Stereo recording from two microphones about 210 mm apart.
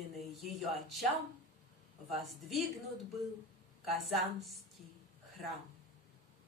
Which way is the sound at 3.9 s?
Centre (ahead or behind).